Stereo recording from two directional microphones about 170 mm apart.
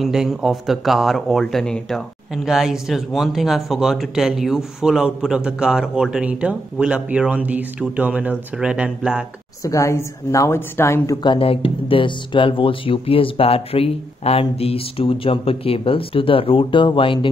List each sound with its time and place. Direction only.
0.0 s speech: centre (ahead or behind)
9.6 s a woman's voice: 20° left (ahead or behind)
11.2 s speech: 35° left (ahead or behind)